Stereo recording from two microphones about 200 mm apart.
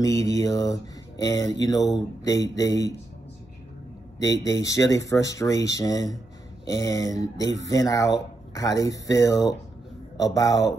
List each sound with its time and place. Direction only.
0.0 s speech: 15° left (ahead or behind)
4.6 s speech: 15° left (ahead or behind)